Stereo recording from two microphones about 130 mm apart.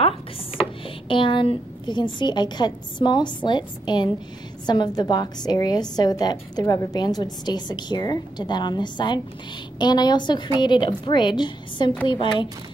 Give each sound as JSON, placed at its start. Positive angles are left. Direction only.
{"t": 0.6, "sound": "a woman's voice", "side_deg": 40}